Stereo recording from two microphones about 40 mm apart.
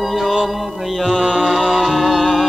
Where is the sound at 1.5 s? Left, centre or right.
Centre.